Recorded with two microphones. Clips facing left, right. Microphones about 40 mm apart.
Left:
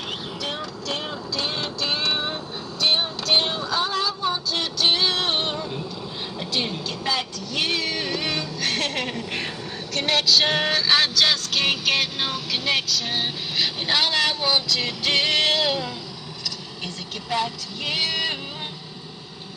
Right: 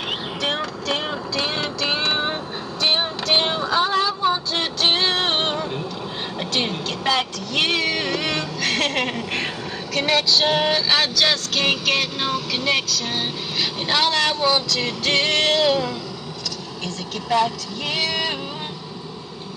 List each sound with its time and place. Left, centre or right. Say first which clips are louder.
0.4 s vehicle: right 6 dB; right
0.9 s vehicle: right 4 dB; right
3.3 s child singing: right 2 dB; right
4.7 s music: right 1 dB; right
7.6 s a sound: right 4 dB; right
8.0 s music: right 3 dB; centre
8.4 s a sound: right 3 dB; centre
9.1 s speech: right 4 dB; centre
9.9 s vehicle: right 1 dB; centre
17.3 s vehicle: right 6 dB; centre